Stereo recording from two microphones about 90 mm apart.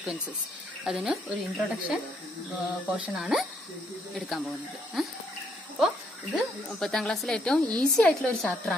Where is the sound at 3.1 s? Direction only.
5° right (ahead or behind).